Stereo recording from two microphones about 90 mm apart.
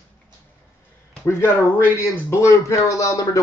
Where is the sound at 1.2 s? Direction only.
30° left (ahead or behind).